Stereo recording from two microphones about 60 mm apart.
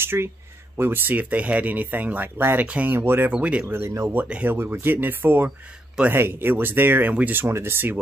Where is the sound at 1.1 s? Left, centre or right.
Right.